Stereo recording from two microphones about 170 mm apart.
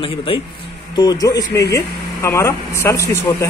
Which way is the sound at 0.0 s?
30° left (ahead or behind).